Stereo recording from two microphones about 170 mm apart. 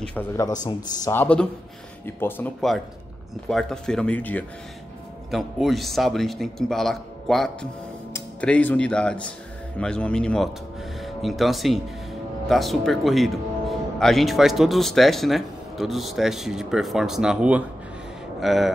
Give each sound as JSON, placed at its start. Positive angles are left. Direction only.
{"t": 0.0, "sound": "a man's voice", "side_deg": 10}
{"t": 1.1, "sound": "speech", "side_deg": 10}